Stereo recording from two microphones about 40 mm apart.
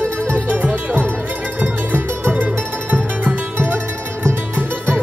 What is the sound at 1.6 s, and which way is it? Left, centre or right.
Music, right.